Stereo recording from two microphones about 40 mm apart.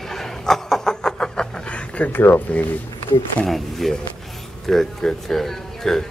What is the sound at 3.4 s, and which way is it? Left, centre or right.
Speech, centre.